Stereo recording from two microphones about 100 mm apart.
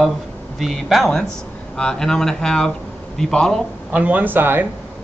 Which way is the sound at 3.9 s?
15° right (ahead or behind).